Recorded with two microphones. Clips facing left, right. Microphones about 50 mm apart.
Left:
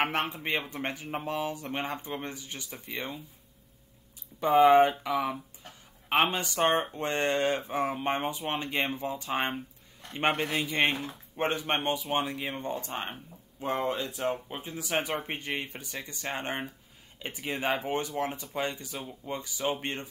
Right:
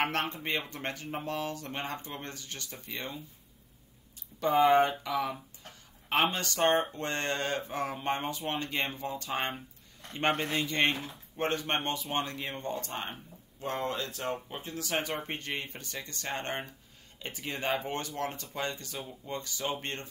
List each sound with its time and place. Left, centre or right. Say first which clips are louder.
0.0 s speech: left 2 dB; centre
4.4 s speech: left 4 dB; centre